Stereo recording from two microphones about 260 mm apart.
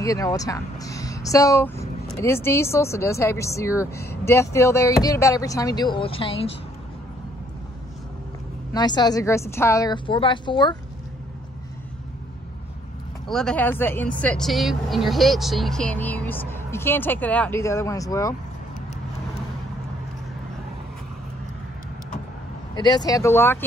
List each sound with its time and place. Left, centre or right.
0.0 s speech: centre
8.7 s speech: centre
13.3 s speech: centre
22.8 s speech: centre